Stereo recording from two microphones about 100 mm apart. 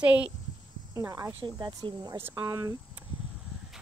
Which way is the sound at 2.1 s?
25° right (ahead or behind).